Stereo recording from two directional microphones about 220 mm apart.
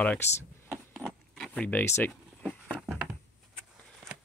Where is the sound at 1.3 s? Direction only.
5° left (ahead or behind).